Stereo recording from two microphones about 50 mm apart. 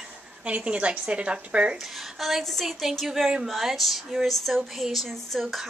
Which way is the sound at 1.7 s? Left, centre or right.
Centre.